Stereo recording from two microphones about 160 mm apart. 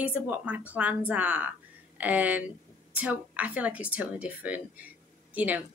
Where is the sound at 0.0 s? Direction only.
10° right (ahead or behind).